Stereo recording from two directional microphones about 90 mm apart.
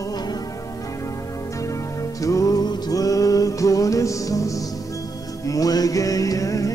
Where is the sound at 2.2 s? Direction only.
40° left (ahead or behind).